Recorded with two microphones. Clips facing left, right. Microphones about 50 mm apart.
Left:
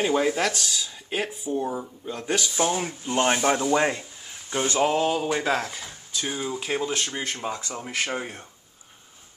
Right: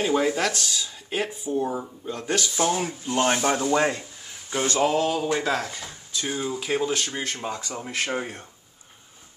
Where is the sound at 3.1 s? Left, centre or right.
Centre.